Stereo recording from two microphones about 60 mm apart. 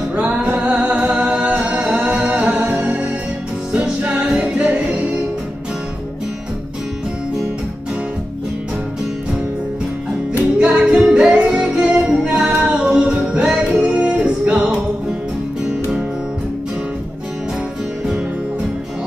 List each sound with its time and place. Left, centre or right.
0.1 s music: centre
10.6 s music: centre